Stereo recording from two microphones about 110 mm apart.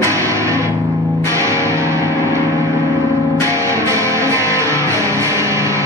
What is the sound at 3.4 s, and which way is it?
Music, 25° right (ahead or behind).